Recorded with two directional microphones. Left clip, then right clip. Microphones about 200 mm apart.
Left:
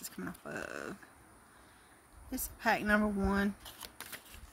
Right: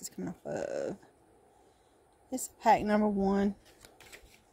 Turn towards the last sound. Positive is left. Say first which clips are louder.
# left 5 dB
turn(degrees=10)  # may be behind; listen again after turning